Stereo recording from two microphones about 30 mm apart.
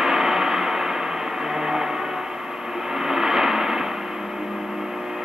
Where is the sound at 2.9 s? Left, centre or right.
Centre.